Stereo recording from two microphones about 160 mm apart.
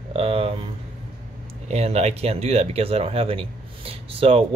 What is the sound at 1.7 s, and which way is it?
Speech, 45° right (ahead or behind).